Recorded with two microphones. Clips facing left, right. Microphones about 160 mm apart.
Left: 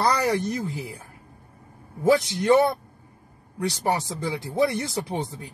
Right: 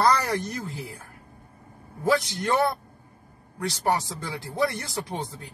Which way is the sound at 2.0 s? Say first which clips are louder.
Left 4 dB; 20° left (ahead or behind).